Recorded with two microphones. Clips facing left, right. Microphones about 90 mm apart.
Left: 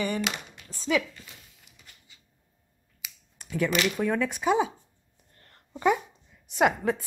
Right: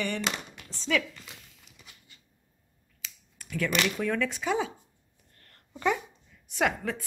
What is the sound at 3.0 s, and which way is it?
Finger snapping, 20° left (ahead or behind).